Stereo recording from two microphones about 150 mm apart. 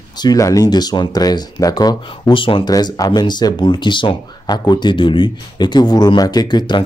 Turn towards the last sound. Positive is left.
turn(degrees=30)  # may be behind; listen again after turning